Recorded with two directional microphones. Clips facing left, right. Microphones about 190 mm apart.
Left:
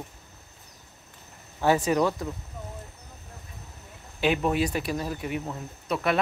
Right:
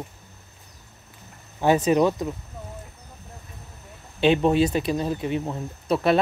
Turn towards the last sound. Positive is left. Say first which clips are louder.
# right 6 dB
turn(degrees=-30)  # may be behind; listen again after turning